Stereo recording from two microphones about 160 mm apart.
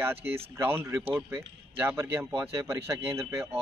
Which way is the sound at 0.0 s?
15° right (ahead or behind).